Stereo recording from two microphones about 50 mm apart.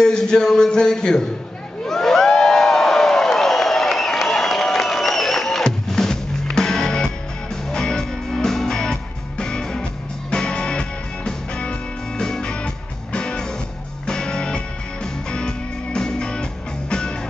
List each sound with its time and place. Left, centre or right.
0.0 s a man's voice: centre
1.9 s crowd: centre
7.7 s music: centre